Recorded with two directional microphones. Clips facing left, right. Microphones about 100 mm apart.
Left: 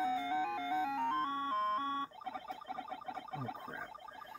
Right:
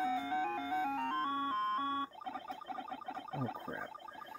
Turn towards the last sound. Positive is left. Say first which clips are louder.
# right 2 dB
turn(degrees=-40)  # may be behind; listen again after turning